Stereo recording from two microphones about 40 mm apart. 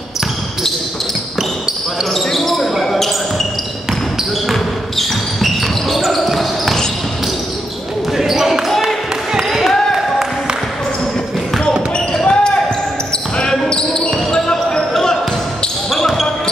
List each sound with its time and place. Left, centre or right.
2.1 s basketball bounce: centre
4.5 s basketball bounce: centre
8.2 s basketball bounce: centre
11.9 s basketball bounce: left